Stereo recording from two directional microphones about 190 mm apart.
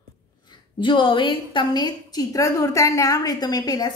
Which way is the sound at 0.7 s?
25° left (ahead or behind).